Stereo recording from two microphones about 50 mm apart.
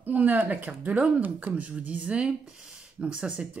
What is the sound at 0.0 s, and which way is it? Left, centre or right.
Speech, right.